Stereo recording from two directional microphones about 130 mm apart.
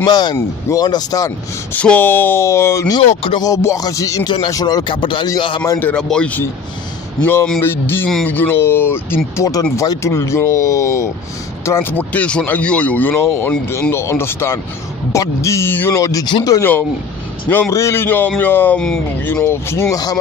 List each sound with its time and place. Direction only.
0.0 s speech: 30° left (ahead or behind)
1.7 s speech: 10° left (ahead or behind)
3.0 s speech: 50° left (ahead or behind)
3.3 s speech: 25° left (ahead or behind)
5.8 s speech: 10° left (ahead or behind)
7.6 s speech: 15° left (ahead or behind)
19.4 s speech: 20° left (ahead or behind)